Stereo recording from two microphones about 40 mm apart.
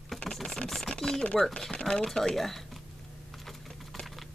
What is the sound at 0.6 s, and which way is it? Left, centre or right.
Speech, centre.